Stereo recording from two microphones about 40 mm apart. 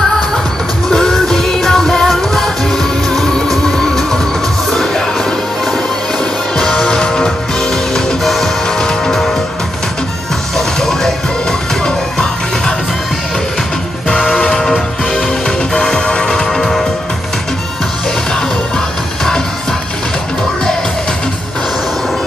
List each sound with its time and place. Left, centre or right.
0.8 s music: centre
6.5 s music: centre
7.9 s music: centre
10.8 s music: centre
14.3 s music: centre